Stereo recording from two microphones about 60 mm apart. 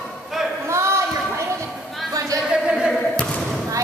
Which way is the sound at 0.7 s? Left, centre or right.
Right.